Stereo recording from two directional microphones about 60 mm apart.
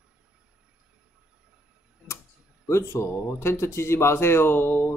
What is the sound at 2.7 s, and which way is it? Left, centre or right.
Speech, left.